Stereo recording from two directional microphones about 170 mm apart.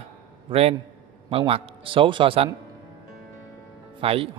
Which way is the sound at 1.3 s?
35° right (ahead or behind).